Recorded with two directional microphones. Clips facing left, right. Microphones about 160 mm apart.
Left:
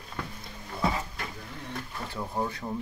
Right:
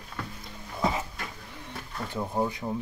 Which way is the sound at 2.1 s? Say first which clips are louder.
Right 4 dB; 15° right (ahead or behind).